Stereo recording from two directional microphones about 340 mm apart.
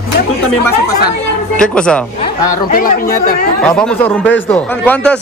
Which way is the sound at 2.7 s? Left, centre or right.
Left.